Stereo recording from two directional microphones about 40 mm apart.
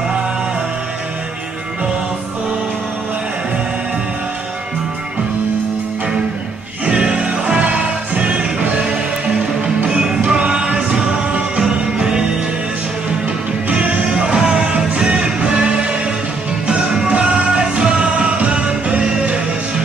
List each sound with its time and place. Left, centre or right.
6.9 s music: right
9.8 s music: right
12.0 s music: right
13.7 s music: right
14.2 s music: centre